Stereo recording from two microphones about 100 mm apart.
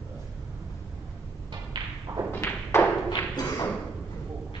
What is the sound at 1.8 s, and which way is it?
Thump, 50° right (ahead or behind).